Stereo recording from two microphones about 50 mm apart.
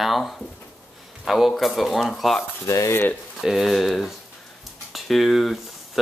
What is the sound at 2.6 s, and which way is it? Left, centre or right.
Speech, left.